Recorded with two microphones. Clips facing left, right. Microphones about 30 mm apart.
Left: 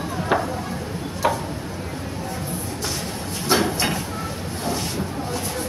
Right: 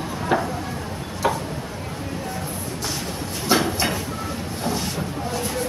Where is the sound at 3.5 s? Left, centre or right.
Centre.